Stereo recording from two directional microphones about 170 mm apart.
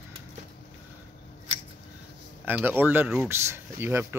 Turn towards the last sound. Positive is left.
turn(degrees=-15)  # may be behind; listen again after turning